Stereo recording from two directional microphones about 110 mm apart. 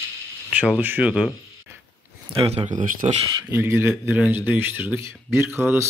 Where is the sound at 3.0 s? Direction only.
70° right (ahead or behind).